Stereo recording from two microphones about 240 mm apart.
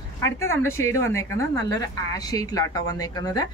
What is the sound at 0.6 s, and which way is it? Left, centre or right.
A woman's voice, centre.